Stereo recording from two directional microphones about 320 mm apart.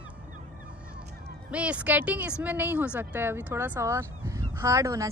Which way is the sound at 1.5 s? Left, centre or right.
Centre.